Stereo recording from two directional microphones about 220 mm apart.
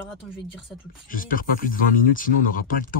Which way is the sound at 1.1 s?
40° left (ahead or behind).